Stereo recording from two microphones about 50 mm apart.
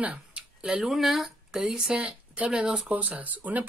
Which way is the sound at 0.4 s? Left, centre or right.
Right.